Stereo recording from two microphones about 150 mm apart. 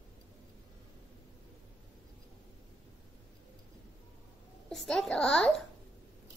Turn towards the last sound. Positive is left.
turn(degrees=5)  # may be behind; listen again after turning